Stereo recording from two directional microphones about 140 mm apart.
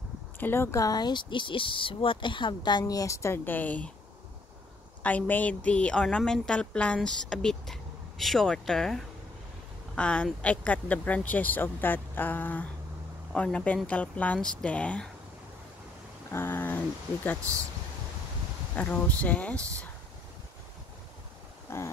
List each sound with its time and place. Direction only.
0.4 s speech: 15° left (ahead or behind)
5.0 s speech: 10° left (ahead or behind)
16.3 s speech: 15° left (ahead or behind)
18.8 s speech: 10° left (ahead or behind)
21.6 s a sound: 20° left (ahead or behind)